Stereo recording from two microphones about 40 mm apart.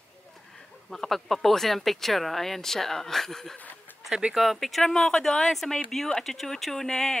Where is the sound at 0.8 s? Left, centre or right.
Centre.